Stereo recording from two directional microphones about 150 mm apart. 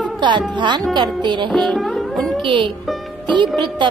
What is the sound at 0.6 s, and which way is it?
Speech, 30° right (ahead or behind).